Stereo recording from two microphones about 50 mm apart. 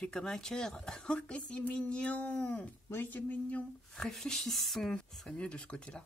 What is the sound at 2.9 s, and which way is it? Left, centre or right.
Speech, left.